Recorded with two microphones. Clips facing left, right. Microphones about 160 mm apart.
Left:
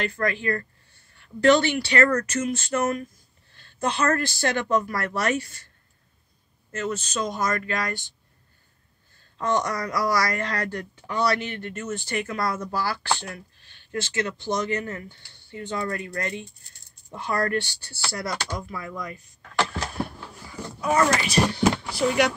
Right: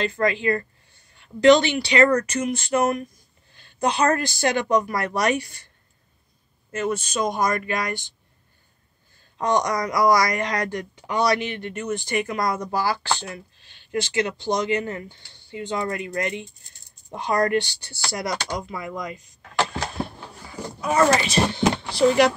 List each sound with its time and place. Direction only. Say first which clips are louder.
0.0 s speech: right 4 dB; 20° right (ahead or behind)
6.7 s speech: right 3 dB; 15° right (ahead or behind)
9.4 s speech: right 3 dB; 15° right (ahead or behind)
19.7 s a sound: right 1 dB; 25° right (ahead or behind)
21.1 s speech: right 2 dB; 25° right (ahead or behind)